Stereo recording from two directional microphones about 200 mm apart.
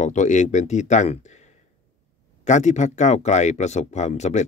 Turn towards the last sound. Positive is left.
turn(degrees=35)  # may be behind; listen again after turning